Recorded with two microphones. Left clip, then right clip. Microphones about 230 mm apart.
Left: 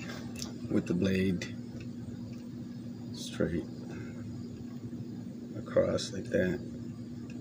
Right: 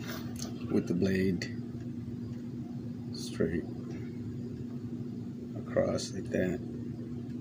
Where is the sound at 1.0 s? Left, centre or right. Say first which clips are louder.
Right 1 dB; centre.